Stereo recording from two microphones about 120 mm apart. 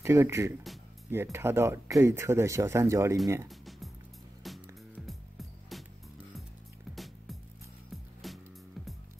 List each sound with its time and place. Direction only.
0.0 s speech: 20° right (ahead or behind)
3.4 s music: centre (ahead or behind)
7.9 s music: centre (ahead or behind)